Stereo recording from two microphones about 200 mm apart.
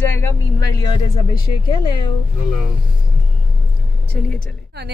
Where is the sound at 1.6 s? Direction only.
25° left (ahead or behind).